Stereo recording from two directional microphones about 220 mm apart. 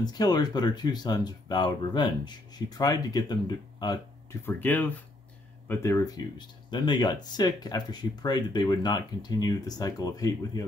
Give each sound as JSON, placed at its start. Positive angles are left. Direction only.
{"t": 0.0, "sound": "speech", "side_deg": 20}